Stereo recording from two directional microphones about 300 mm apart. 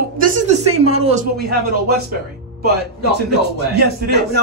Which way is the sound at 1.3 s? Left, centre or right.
Right.